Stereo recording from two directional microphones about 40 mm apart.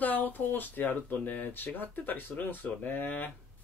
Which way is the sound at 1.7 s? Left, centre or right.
Left.